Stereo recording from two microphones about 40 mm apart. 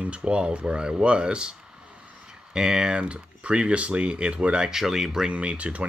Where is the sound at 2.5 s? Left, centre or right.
Centre.